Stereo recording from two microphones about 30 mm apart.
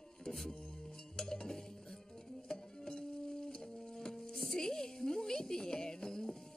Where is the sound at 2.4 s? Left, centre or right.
Left.